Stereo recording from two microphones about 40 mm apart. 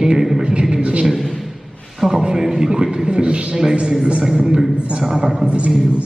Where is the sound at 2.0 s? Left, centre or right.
Centre.